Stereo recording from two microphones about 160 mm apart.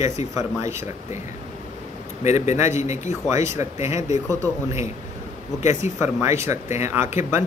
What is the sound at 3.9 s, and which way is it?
Speech, 45° left (ahead or behind).